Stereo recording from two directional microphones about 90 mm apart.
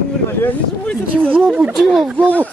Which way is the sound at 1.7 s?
5° right (ahead or behind).